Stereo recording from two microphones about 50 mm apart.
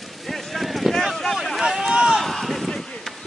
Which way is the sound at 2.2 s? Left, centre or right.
Centre.